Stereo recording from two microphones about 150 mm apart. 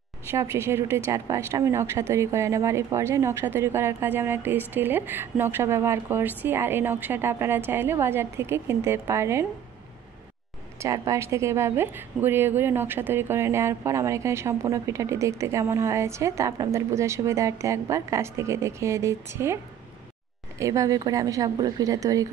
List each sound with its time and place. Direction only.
0.3 s speech: 20° right (ahead or behind)
10.8 s a woman's voice: 20° right (ahead or behind)